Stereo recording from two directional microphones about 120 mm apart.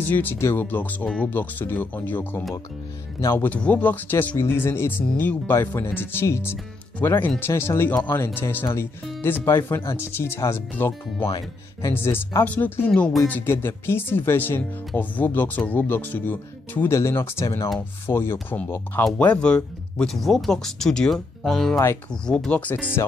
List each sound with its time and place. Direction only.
0.0 s speech: 15° left (ahead or behind)
3.4 s speech: 10° left (ahead or behind)
19.0 s speech: 10° left (ahead or behind)
23.0 s speech: 25° left (ahead or behind)